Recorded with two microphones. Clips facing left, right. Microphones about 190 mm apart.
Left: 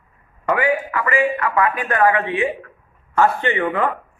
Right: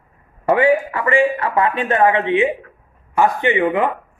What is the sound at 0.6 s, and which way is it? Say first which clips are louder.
Speech: right 5 dB; 30° right (ahead or behind).